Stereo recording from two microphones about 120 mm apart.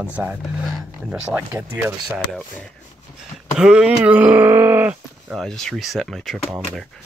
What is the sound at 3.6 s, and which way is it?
Groan, 5° right (ahead or behind).